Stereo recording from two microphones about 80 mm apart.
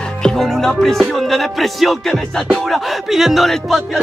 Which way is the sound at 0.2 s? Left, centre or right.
Centre.